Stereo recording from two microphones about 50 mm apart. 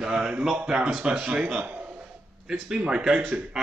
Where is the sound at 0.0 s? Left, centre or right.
Centre.